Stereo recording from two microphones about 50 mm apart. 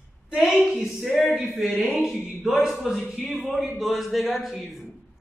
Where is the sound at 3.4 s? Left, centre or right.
Centre.